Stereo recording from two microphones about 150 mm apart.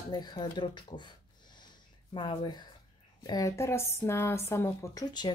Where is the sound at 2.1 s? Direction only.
30° left (ahead or behind).